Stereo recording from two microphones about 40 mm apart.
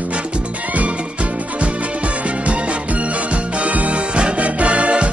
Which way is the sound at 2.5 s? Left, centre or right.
Right.